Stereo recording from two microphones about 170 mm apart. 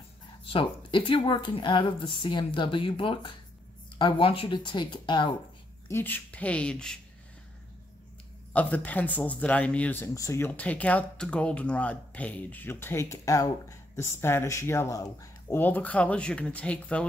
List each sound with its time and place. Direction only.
0.5 s speech: 30° left (ahead or behind)
5.9 s speech: 10° left (ahead or behind)
8.5 s speech: 10° left (ahead or behind)